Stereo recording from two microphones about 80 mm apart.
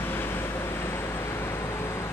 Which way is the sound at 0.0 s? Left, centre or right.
Left.